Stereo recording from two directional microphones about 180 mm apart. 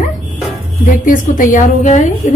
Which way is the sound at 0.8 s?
50° left (ahead or behind).